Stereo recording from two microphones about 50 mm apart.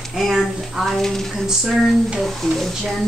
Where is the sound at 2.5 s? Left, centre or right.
Centre.